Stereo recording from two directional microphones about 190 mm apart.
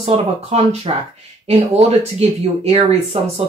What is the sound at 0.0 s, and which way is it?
Speech, 35° right (ahead or behind).